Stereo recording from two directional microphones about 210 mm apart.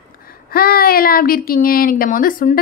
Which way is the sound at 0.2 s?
45° left (ahead or behind).